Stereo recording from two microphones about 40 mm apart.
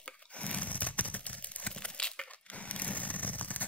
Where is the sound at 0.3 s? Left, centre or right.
Left.